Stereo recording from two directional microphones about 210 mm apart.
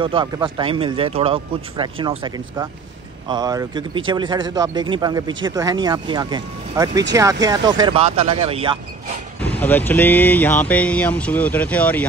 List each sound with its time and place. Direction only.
0.0 s speech: 25° right (ahead or behind)
9.4 s speech: 5° left (ahead or behind)